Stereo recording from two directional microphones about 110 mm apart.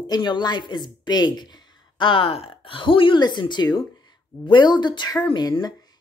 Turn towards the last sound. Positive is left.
turn(degrees=40)  # may be behind; listen again after turning